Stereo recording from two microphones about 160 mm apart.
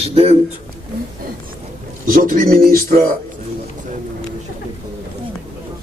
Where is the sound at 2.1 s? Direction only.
60° right (ahead or behind).